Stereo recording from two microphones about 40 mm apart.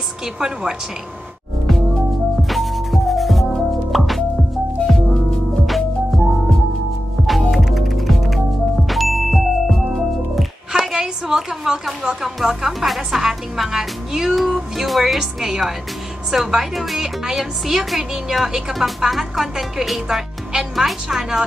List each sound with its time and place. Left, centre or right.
2.5 s music: centre
5.7 s music: centre
7.2 s music: centre
10.7 s a sound: centre
12.2 s speech: centre
15.1 s speech: centre